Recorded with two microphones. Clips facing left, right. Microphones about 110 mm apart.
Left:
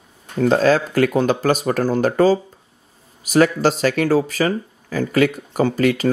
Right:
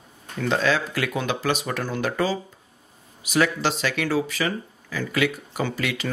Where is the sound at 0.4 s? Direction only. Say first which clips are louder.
Left 8 dB; 40° left (ahead or behind).